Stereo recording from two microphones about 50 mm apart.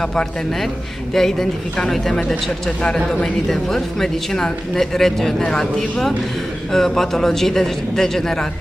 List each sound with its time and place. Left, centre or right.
0.0 s speech: centre